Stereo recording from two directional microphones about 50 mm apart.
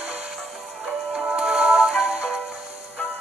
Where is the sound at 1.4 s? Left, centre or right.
Right.